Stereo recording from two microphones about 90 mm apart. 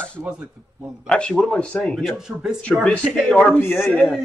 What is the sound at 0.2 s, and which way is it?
Speech, 10° right (ahead or behind).